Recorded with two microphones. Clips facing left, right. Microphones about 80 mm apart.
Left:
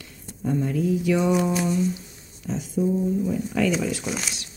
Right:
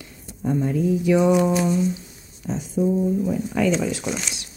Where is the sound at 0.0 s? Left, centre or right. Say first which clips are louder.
Right 2 dB; centre.